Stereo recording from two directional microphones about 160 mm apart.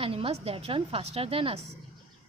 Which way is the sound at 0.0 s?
35° right (ahead or behind).